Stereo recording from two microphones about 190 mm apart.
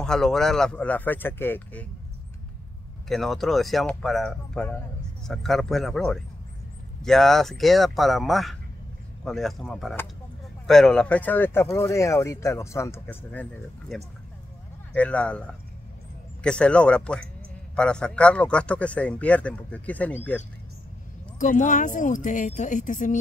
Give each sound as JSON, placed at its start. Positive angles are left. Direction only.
{"t": 0.0, "sound": "speech", "side_deg": 5}
{"t": 3.1, "sound": "speech", "side_deg": 0}
{"t": 16.4, "sound": "speech", "side_deg": 5}
{"t": 21.4, "sound": "speech", "side_deg": 40}